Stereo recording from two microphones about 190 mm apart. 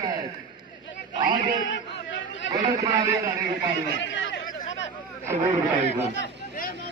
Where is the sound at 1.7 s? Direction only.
75° left (ahead or behind).